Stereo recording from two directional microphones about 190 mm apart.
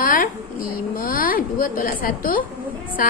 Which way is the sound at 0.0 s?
45° left (ahead or behind).